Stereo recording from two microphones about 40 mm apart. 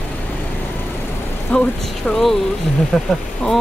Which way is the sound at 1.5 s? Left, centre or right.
Left.